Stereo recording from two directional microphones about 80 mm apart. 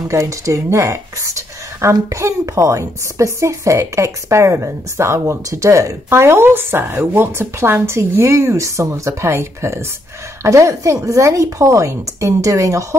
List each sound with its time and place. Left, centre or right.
0.1 s speech: right